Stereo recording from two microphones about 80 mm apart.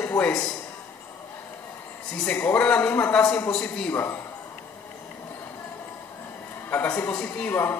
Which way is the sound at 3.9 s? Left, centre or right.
Left.